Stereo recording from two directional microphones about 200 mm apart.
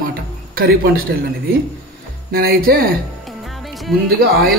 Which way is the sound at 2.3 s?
50° right (ahead or behind).